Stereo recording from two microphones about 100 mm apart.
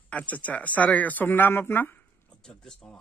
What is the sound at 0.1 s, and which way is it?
Speech, 15° left (ahead or behind).